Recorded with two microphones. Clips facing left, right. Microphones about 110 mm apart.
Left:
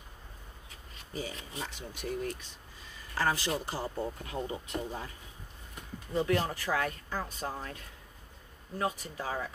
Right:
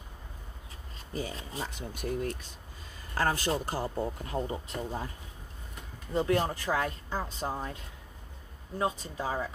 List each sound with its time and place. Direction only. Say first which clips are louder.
0.9 s speech: right 3 dB; 40° right (ahead or behind)
4.2 s speech: right 3 dB; 35° right (ahead or behind)
6.1 s speech: right 2 dB; 30° right (ahead or behind)